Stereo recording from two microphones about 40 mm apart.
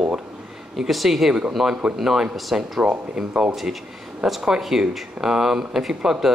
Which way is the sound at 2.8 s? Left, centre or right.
Right.